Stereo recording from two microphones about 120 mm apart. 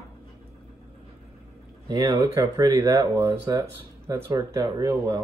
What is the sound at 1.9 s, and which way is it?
Speech, 35° right (ahead or behind).